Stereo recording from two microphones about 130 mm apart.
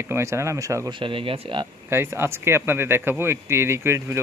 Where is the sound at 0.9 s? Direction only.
40° right (ahead or behind).